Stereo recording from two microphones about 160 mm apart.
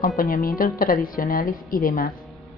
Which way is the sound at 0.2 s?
65° left (ahead or behind).